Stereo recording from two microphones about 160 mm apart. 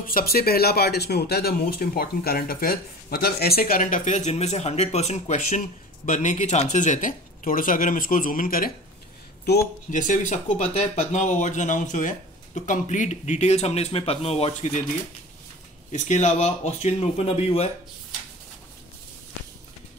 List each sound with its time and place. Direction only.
0.0 s speech: 65° left (ahead or behind)
9.8 s speech: 50° left (ahead or behind)
15.9 s speech: 45° left (ahead or behind)